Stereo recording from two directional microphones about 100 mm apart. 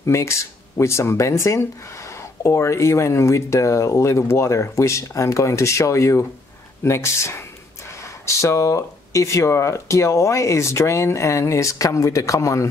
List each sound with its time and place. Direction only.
0.0 s speech: 30° left (ahead or behind)